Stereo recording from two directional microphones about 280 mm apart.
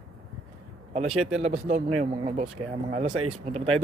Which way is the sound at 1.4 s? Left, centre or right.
Right.